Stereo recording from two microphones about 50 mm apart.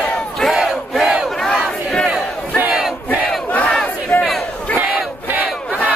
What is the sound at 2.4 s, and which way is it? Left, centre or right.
Battle cry, right.